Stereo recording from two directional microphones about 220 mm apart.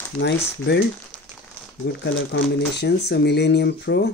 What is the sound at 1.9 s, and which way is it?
Speech, 50° left (ahead or behind).